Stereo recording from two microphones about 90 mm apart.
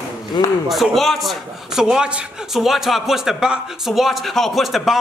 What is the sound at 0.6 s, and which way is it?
A man's voice, centre (ahead or behind).